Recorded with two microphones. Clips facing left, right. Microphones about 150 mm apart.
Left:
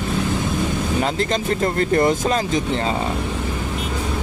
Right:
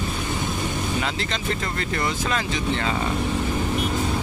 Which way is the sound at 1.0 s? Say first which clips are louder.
Left 6 dB; 45° left (ahead or behind).